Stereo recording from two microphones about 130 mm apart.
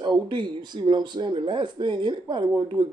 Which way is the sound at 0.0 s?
35° right (ahead or behind).